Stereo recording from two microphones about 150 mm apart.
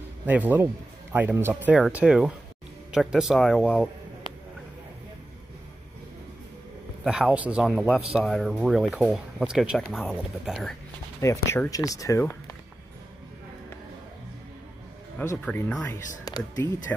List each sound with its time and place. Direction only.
0.3 s speech: 10° right (ahead or behind)
7.1 s speech: 5° right (ahead or behind)
11.1 s speech: 15° left (ahead or behind)
15.4 s speech: 10° left (ahead or behind)